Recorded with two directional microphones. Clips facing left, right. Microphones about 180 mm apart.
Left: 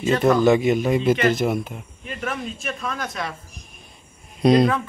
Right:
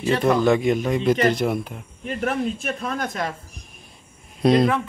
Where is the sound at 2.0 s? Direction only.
55° right (ahead or behind).